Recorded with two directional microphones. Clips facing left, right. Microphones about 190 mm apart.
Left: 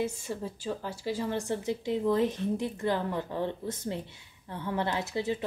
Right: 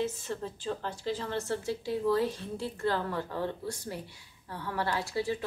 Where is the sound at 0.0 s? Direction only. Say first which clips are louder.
Left 1 dB; 10° left (ahead or behind).